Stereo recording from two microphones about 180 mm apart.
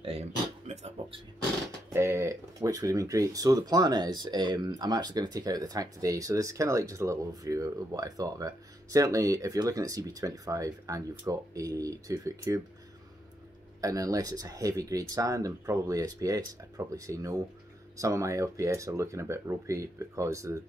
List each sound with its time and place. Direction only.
0.0 s speech: 35° right (ahead or behind)
1.9 s speech: 15° right (ahead or behind)
13.7 s speech: 20° right (ahead or behind)